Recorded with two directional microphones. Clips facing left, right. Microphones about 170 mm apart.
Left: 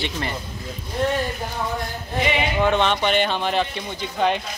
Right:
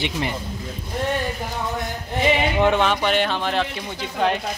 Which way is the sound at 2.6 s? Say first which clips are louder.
Left 1 dB; 10° right (ahead or behind).